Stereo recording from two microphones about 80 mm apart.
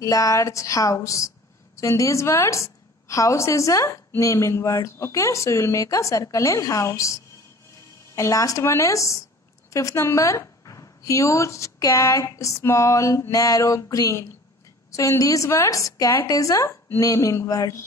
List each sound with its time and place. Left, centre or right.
0.0 s a woman's voice: left